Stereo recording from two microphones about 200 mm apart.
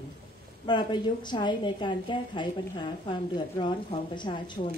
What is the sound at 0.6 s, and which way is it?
A woman's voice, 20° left (ahead or behind).